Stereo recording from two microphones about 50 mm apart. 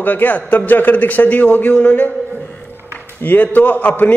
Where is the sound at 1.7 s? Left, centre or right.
Left.